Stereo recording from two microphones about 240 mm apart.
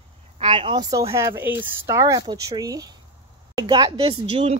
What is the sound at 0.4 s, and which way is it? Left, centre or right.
Speech, right.